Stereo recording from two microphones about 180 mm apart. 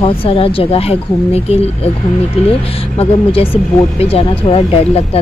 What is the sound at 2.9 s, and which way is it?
Speech, 30° left (ahead or behind).